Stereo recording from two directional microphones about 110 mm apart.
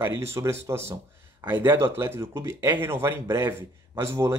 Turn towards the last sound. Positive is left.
turn(degrees=-25)  # may be behind; listen again after turning